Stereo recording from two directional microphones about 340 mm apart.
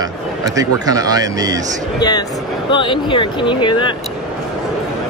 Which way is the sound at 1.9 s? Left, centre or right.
Centre.